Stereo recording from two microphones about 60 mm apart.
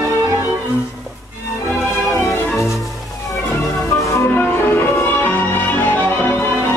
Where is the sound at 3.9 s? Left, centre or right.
Left.